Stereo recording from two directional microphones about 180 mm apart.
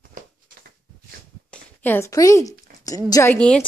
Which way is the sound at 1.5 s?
10° left (ahead or behind).